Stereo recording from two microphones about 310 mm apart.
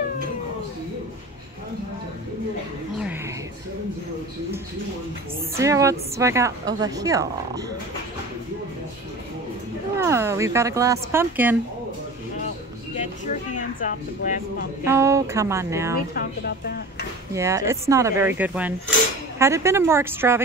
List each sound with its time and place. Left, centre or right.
5.6 s a woman's voice: centre
9.9 s a woman's voice: centre
13.8 s speech: left
14.9 s a woman's voice: centre
16.2 s a woman's voice: left
17.3 s a woman's voice: centre